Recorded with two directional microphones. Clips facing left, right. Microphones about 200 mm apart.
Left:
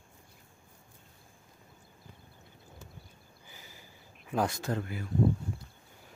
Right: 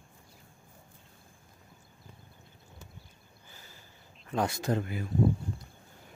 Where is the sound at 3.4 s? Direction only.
15° left (ahead or behind).